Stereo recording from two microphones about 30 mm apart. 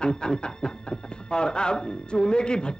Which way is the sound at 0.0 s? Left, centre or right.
Left.